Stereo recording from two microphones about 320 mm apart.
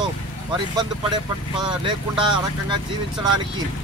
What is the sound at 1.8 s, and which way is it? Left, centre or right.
Speech, centre.